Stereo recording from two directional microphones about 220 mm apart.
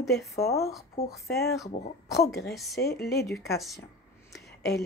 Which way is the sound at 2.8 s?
45° left (ahead or behind).